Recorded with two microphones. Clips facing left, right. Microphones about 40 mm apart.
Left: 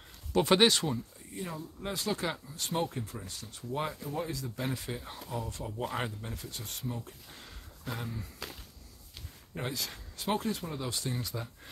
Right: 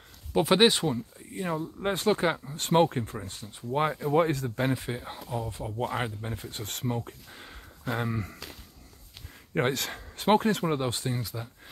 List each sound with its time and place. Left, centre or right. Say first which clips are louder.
0.3 s speech: right 3 dB; centre
1.8 s speech: right 8 dB; right
3.2 s speech: right 4 dB; right
4.7 s speech: right 4 dB; right
6.3 s speech: right 4 dB; right
6.6 s speech: right 8 dB; right
7.2 s a sound: right 4 dB; centre
8.0 s speech: right 9 dB; right
9.5 s speech: right 10 dB; right
10.8 s speech: right 6 dB; right
11.2 s speech: right 1 dB; centre